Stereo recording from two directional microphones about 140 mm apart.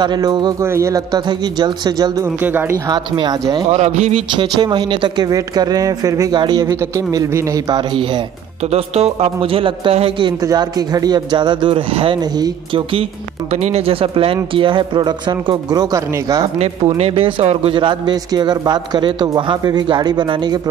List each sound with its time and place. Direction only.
0.0 s speech: 30° right (ahead or behind)
2.4 s speech: 15° right (ahead or behind)
2.9 s speech: 30° right (ahead or behind)
3.7 s a man's voice: 50° right (ahead or behind)
4.4 s speech: 30° right (ahead or behind)
8.7 s a man's voice: 50° right (ahead or behind)
10.4 s speech: 30° right (ahead or behind)
13.5 s speech: 50° right (ahead or behind); by 16.4 s 25° right (ahead or behind)
16.5 s speech: 45° right (ahead or behind)